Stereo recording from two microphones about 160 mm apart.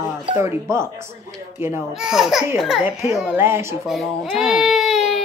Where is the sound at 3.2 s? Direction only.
15° right (ahead or behind).